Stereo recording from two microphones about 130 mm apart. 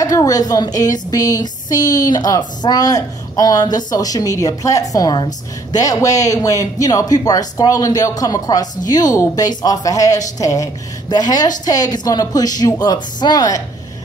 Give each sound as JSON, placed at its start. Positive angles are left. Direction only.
{"t": 0.0, "sound": "speech", "side_deg": 25}